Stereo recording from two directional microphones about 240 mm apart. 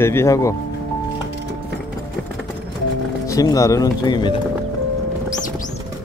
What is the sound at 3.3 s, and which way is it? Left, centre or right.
Speech, centre.